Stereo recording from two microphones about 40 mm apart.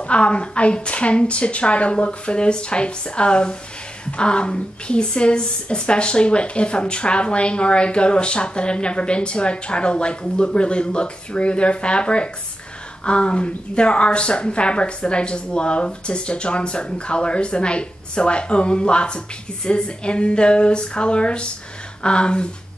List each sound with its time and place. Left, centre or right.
0.0 s speech: left